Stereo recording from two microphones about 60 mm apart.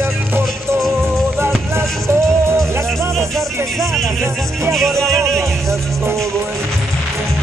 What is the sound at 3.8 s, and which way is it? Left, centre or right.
Speech, centre.